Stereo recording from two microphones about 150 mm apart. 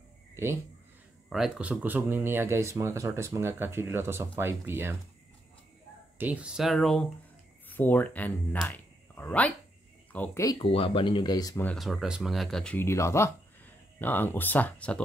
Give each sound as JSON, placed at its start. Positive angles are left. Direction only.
{"t": 1.3, "sound": "speech", "side_deg": -5}
{"t": 6.1, "sound": "speech", "side_deg": -10}
{"t": 7.7, "sound": "speech", "side_deg": 10}
{"t": 8.6, "sound": "a sound", "side_deg": 10}
{"t": 10.1, "sound": "speech", "side_deg": 10}
{"t": 10.6, "sound": "speech", "side_deg": 35}
{"t": 11.6, "sound": "speech", "side_deg": 0}
{"t": 12.7, "sound": "speech", "side_deg": 20}